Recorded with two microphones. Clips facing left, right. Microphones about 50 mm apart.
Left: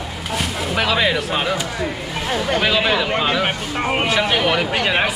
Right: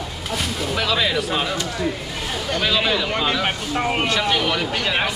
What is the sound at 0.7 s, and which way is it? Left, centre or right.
Speech, centre.